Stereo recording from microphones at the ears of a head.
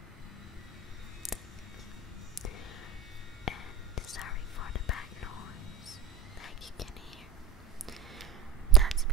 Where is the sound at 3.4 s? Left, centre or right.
Left.